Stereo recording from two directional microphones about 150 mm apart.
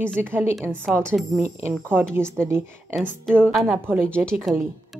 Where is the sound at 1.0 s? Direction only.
Centre (ahead or behind).